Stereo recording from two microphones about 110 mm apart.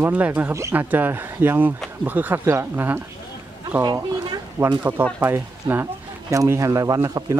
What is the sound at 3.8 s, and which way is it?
Speech, 40° right (ahead or behind).